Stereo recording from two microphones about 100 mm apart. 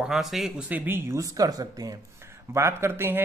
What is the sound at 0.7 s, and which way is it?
Speech, 20° right (ahead or behind).